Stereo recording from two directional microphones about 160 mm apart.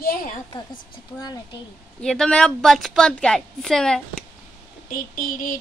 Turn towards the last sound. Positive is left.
turn(degrees=60)  # may be behind; listen again after turning